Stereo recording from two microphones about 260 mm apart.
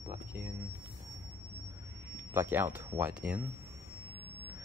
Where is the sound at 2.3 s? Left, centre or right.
Centre.